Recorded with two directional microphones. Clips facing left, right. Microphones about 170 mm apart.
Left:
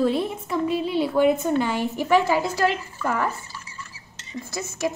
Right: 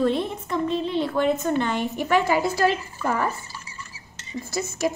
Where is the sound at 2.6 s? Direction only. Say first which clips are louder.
Right 1 dB; 15° right (ahead or behind).